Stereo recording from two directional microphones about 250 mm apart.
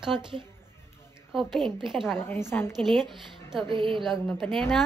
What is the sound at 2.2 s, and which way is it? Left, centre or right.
Speech, centre.